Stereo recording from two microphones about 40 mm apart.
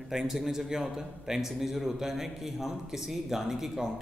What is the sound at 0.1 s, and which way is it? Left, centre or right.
Speech, centre.